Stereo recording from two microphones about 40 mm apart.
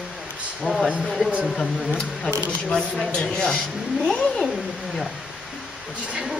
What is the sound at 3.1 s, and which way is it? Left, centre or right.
Speech, left.